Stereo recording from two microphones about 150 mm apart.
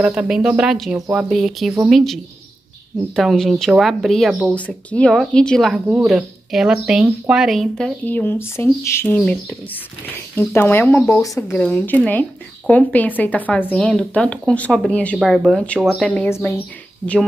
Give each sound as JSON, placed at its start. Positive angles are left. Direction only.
{"t": 0.0, "sound": "a woman's voice", "side_deg": -5}
{"t": 3.2, "sound": "a woman's voice", "side_deg": 0}
{"t": 4.6, "sound": "a woman's voice", "side_deg": 10}
{"t": 11.5, "sound": "speech", "side_deg": 10}
{"t": 15.1, "sound": "a woman's voice", "side_deg": 0}
{"t": 16.0, "sound": "speech", "side_deg": 10}